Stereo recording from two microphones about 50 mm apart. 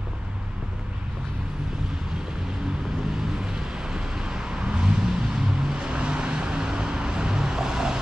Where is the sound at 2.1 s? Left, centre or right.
Centre.